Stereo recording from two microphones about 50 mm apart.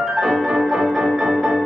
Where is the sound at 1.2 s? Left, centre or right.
Centre.